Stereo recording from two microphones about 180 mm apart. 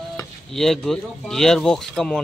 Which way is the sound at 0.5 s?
Centre (ahead or behind).